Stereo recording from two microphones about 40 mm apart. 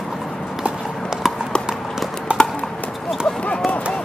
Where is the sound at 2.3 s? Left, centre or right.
Right.